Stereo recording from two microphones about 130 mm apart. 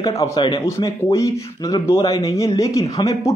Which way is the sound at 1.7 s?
20° left (ahead or behind).